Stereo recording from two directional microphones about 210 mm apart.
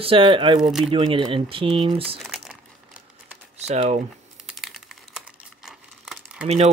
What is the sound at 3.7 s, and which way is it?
Speech, 35° right (ahead or behind).